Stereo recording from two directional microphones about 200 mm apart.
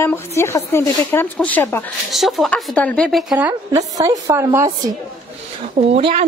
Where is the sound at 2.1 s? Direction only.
Centre (ahead or behind); by 4.9 s 20° right (ahead or behind).